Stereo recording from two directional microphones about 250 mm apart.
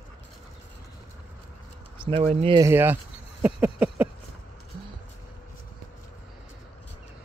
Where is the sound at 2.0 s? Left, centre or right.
Right.